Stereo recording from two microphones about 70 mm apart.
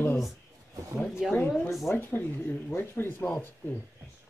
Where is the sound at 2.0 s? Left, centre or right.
Left.